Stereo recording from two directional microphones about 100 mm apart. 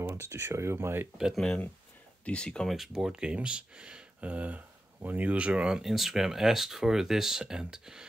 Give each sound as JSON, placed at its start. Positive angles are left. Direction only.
{"t": 0.1, "sound": "speech", "side_deg": -25}
{"t": 1.1, "sound": "speech", "side_deg": -5}
{"t": 2.2, "sound": "speech", "side_deg": 10}